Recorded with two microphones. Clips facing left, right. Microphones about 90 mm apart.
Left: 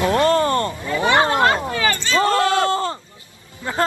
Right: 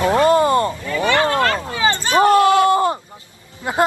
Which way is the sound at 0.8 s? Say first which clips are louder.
Even; 20° left (ahead or behind).